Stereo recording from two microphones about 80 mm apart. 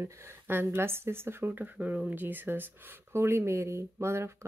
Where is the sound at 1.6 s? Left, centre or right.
Centre; by 4.5 s right.